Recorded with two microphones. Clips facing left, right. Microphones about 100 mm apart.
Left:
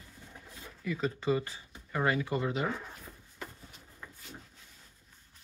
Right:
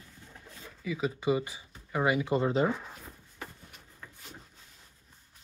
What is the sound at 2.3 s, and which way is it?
Speech, 30° right (ahead or behind).